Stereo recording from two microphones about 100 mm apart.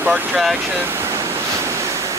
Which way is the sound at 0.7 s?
20° right (ahead or behind).